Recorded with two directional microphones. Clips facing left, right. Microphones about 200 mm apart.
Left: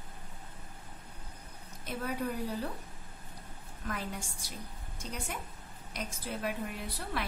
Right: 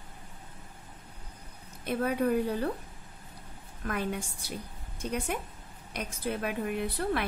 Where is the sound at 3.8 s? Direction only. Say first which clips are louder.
Right 6 dB; 60° right (ahead or behind).